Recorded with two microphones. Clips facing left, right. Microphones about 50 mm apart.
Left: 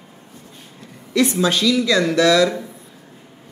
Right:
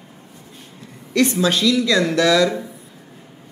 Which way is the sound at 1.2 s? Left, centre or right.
Centre.